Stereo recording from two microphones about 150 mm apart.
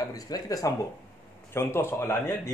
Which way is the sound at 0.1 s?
25° left (ahead or behind).